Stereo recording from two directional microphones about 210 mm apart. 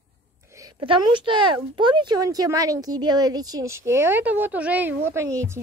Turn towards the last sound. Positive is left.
turn(degrees=-10)  # may be behind; listen again after turning